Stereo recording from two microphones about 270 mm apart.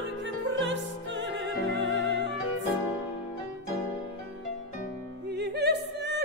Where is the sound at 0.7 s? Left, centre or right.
Right.